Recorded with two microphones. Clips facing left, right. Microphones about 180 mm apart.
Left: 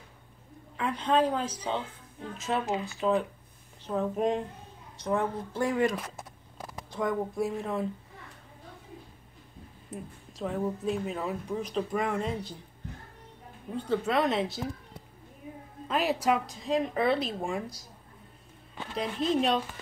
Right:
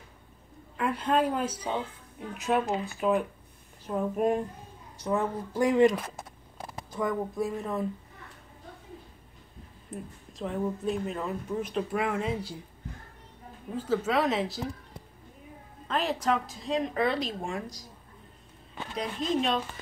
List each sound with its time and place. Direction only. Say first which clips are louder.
0.7 s a woman's voice: even; 5° right (ahead or behind)
6.9 s speech: even; centre (ahead or behind)
10.3 s speech: even; centre (ahead or behind)
13.7 s speech: even; centre (ahead or behind)
15.9 s speech: left 1 dB; 5° left (ahead or behind)
18.9 s speech: left 2 dB; 5° left (ahead or behind)